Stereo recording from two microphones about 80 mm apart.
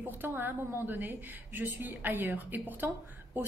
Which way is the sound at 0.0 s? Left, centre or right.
Right.